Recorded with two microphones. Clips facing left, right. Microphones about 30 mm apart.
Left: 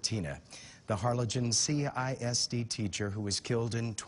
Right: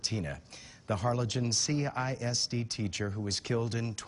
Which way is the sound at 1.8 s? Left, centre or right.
Right.